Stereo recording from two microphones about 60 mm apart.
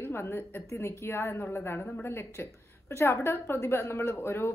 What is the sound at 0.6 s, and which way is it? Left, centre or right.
A woman's voice, left.